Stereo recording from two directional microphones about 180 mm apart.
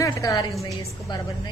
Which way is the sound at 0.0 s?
20° left (ahead or behind).